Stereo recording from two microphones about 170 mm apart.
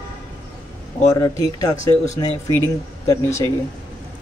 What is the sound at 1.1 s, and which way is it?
Speech, 20° left (ahead or behind).